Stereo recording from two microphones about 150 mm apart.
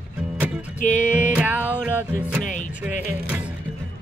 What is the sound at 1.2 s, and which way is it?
Music, 10° right (ahead or behind).